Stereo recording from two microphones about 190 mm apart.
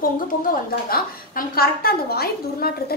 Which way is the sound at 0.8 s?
50° left (ahead or behind).